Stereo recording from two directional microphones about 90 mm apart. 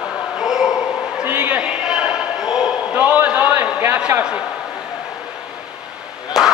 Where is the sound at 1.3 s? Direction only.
20° right (ahead or behind).